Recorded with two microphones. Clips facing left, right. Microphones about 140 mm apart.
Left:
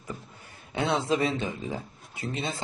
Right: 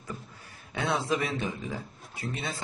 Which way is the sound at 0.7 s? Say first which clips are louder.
Left 3 dB; 25° left (ahead or behind).